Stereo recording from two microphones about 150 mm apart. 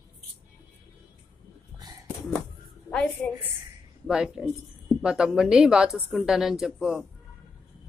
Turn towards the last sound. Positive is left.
turn(degrees=-5)  # may be behind; listen again after turning